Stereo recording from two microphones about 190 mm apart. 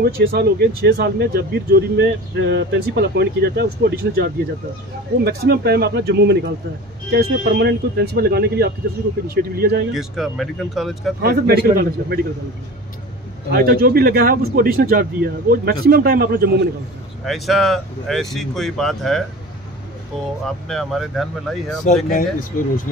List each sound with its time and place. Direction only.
0.0 s speech: 55° right (ahead or behind)
9.9 s speech: centre (ahead or behind)
11.1 s speech: 55° right (ahead or behind)
13.5 s speech: 55° right (ahead or behind)
17.2 s speech: centre (ahead or behind)
20.4 s speech: centre (ahead or behind)
21.8 s speech: 40° left (ahead or behind)